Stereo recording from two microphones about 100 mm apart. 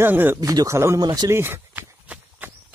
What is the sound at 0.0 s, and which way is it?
Speech, 20° right (ahead or behind).